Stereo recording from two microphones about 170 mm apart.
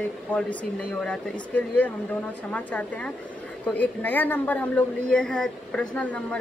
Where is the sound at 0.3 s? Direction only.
5° left (ahead or behind).